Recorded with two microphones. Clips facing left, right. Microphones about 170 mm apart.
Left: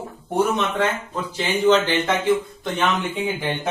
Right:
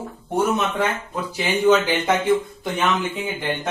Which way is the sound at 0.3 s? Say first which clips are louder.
Even; 5° right (ahead or behind).